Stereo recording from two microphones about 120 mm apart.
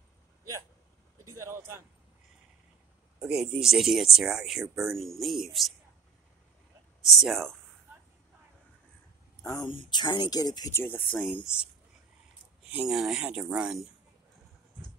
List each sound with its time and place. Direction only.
1.3 s speech: 20° right (ahead or behind)
3.2 s speech: 5° right (ahead or behind)
7.2 s speech: centre (ahead or behind)
9.7 s speech: 40° left (ahead or behind)
10.7 s speech: 20° left (ahead or behind)
12.7 s speech: 5° right (ahead or behind)